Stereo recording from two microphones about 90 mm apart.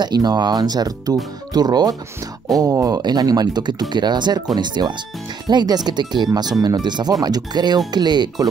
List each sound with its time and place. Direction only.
0.0 s speech: 50° right (ahead or behind)